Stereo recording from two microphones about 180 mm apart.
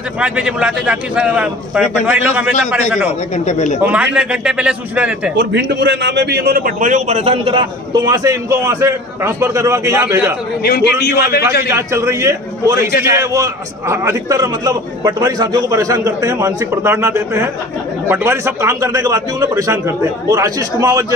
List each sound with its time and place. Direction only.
0.2 s a man's voice: 5° right (ahead or behind)
3.4 s speech: 40° left (ahead or behind)
3.8 s a man's voice: 10° right (ahead or behind)
5.3 s a man's voice: 75° right (ahead or behind); by 10.3 s 15° right (ahead or behind)
10.6 s a man's voice: 60° left (ahead or behind)
11.7 s a man's voice: 15° right (ahead or behind)